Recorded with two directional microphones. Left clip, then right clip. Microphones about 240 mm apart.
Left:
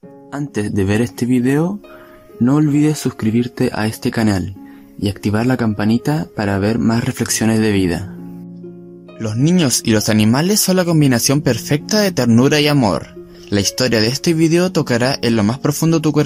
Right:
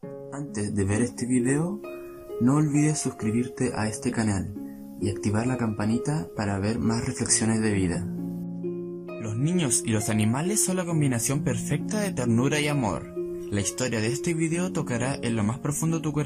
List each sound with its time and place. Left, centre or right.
0.3 s speech: left
2.9 s speech: left
3.5 s speech: left
9.2 s speech: left